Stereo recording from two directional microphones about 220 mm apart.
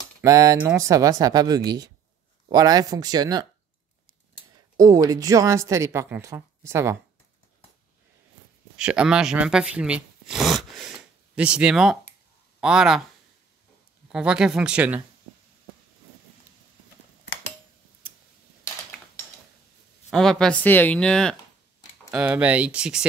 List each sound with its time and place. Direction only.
0.2 s speech: 15° right (ahead or behind)
4.7 s speech: 15° right (ahead or behind)
8.7 s speech: 5° right (ahead or behind)
14.0 s speech: 5° right (ahead or behind)
20.1 s speech: centre (ahead or behind)